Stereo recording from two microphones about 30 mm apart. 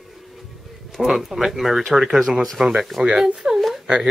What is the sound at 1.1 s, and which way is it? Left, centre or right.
Speech, centre.